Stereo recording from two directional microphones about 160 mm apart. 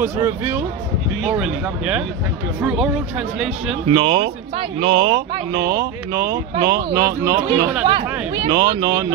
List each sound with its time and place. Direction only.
0.0 s speech: 15° right (ahead or behind)
3.8 s speech: 35° right (ahead or behind)